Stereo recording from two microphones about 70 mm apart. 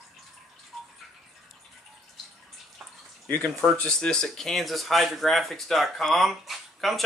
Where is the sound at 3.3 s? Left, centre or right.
Left.